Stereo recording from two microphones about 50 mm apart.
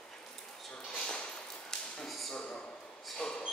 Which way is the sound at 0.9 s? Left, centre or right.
Centre.